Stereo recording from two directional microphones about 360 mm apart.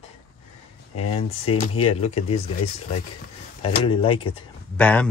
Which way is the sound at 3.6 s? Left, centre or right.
Centre.